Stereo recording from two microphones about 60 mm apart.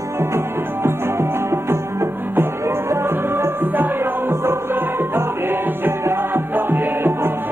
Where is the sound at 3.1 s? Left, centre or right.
Right.